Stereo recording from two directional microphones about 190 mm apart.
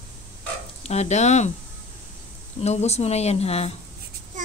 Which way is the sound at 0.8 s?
35° left (ahead or behind).